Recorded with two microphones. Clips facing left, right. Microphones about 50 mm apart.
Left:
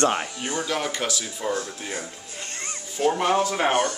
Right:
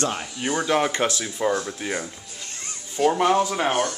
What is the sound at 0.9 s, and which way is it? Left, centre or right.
Speech, right.